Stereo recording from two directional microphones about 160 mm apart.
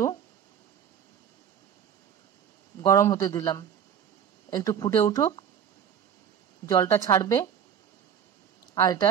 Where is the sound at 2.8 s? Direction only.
20° left (ahead or behind).